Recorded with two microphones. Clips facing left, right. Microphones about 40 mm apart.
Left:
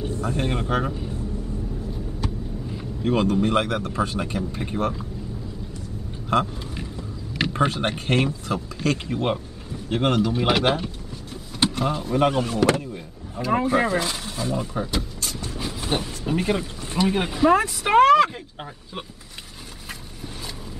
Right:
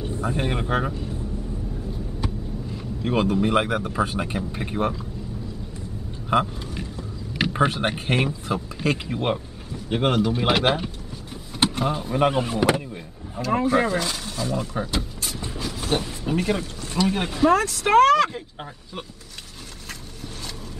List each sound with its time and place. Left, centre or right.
0.2 s speech: centre
2.2 s vehicle: centre
2.7 s vehicle: centre
3.1 s speech: centre
7.3 s speech: centre
13.5 s speech: centre
14.8 s vehicle: centre
15.6 s vehicle: centre
16.3 s speech: centre
17.2 s speech: centre